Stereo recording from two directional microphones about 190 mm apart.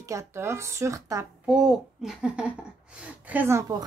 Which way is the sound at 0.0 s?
15° right (ahead or behind).